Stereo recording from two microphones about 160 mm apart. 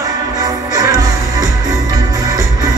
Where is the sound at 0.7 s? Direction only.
20° right (ahead or behind).